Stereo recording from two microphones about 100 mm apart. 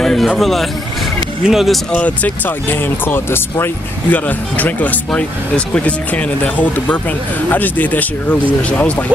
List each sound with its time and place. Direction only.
0.0 s speech: 5° left (ahead or behind)
1.9 s speech: 15° left (ahead or behind)